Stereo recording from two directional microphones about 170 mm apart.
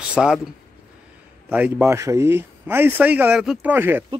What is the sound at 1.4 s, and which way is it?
Speech, 10° right (ahead or behind).